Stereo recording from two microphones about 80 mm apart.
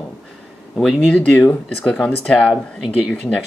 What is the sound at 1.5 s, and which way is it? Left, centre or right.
Speech, centre.